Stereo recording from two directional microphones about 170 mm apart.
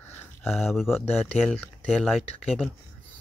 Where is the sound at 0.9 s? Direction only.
10° left (ahead or behind).